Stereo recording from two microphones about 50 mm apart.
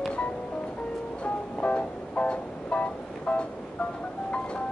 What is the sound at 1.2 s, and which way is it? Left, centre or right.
Music, left.